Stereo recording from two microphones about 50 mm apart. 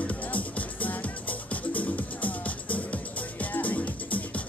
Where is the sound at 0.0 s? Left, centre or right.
Left.